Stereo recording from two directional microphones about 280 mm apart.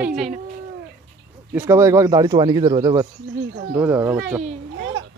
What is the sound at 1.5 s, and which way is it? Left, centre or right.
A man's voice, centre.